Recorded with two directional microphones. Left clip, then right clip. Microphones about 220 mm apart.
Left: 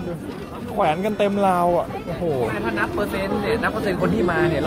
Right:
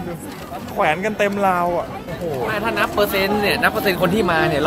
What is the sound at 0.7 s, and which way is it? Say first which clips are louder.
Speech: right 2 dB; 10° left (ahead or behind).